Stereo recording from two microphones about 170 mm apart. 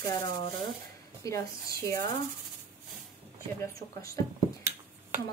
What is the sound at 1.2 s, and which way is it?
Speech, 15° left (ahead or behind).